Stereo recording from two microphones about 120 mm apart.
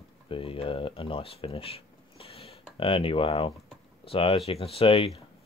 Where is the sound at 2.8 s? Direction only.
50° left (ahead or behind).